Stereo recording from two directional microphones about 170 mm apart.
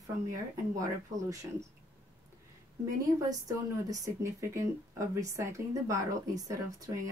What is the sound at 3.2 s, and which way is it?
Speech, 20° right (ahead or behind).